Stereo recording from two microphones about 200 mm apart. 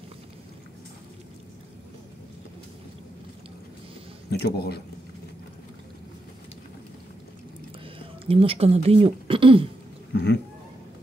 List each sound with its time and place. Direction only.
4.3 s speech: 55° left (ahead or behind)
8.0 s speech: 25° right (ahead or behind)
10.1 s speech: 55° left (ahead or behind)